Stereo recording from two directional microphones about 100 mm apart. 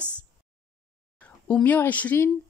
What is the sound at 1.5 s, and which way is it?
Speech, 15° left (ahead or behind).